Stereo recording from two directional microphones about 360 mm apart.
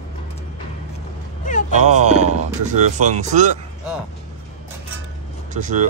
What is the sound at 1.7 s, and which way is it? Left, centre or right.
Speech, centre.